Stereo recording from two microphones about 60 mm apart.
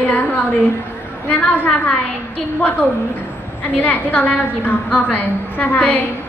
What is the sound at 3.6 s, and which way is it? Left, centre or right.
A woman's voice, left.